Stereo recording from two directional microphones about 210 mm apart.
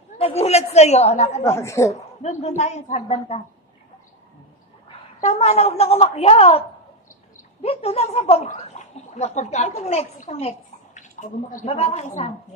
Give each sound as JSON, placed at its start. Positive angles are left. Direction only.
{"t": 0.2, "sound": "speech", "side_deg": 30}
{"t": 1.4, "sound": "a woman's voice", "side_deg": 15}
{"t": 2.2, "sound": "speech", "side_deg": 30}
{"t": 5.2, "sound": "a woman's voice", "side_deg": 30}
{"t": 7.6, "sound": "speech", "side_deg": 30}